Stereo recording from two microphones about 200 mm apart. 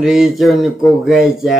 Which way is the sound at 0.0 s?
Centre (ahead or behind).